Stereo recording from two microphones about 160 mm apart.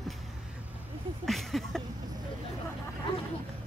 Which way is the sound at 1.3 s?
Centre (ahead or behind).